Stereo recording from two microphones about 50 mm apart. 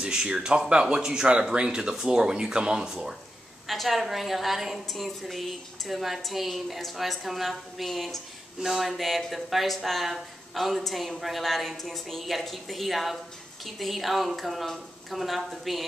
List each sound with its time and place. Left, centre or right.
0.0 s speech: centre
3.6 s speech: centre